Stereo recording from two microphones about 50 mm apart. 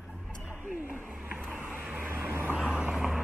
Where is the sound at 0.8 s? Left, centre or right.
Right.